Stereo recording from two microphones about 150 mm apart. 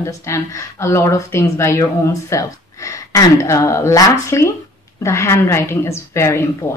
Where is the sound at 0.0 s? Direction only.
20° left (ahead or behind).